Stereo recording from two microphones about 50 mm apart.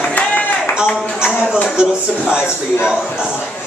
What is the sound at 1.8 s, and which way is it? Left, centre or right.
A man's voice, centre.